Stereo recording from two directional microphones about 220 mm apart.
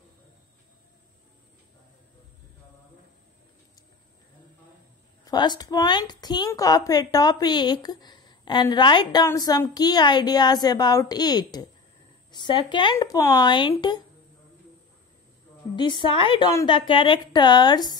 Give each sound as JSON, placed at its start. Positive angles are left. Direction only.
{"t": 5.2, "sound": "a woman's voice", "side_deg": 20}
{"t": 15.7, "sound": "a woman's voice", "side_deg": 20}